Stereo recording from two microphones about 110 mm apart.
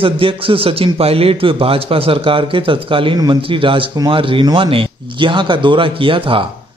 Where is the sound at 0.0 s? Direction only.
55° right (ahead or behind).